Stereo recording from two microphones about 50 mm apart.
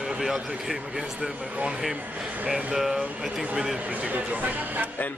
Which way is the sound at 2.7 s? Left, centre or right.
Centre.